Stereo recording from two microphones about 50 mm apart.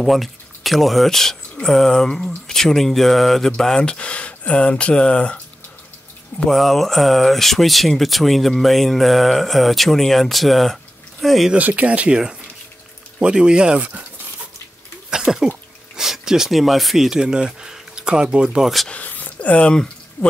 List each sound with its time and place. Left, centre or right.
0.0 s speech: centre; by 5.4 s left
6.5 s speech: centre
11.5 s speech: right
13.2 s speech: centre
15.0 s a sound: centre
16.0 s speech: centre
18.6 s speech: centre
19.0 s a sound: left
19.7 s a sound: centre